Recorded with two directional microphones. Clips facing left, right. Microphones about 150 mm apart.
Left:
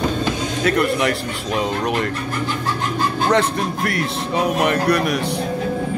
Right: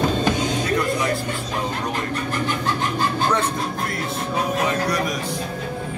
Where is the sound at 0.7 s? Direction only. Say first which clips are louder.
Left 8 dB; 75° left (ahead or behind).